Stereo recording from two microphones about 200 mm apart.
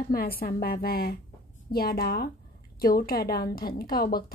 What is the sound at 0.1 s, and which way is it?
A woman's voice, 50° left (ahead or behind).